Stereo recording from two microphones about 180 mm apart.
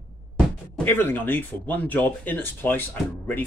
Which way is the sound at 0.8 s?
10° left (ahead or behind).